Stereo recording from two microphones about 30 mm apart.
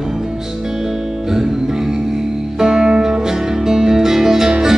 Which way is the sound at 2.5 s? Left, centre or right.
Centre.